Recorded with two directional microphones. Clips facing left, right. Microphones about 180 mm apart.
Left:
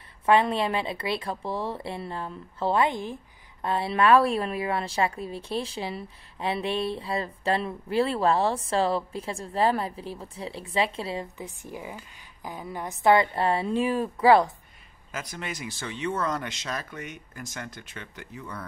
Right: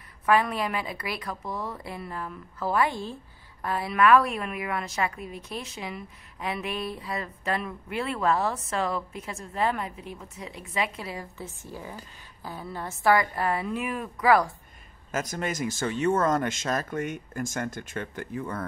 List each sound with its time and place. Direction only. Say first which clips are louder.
0.3 s a woman's voice: left 2 dB; 25° left (ahead or behind)
11.3 s a woman's voice: left 1 dB; 15° left (ahead or behind)
15.0 s speech: right 6 dB; 45° right (ahead or behind)